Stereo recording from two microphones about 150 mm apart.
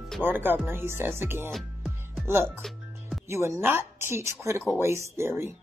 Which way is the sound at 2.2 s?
15° right (ahead or behind).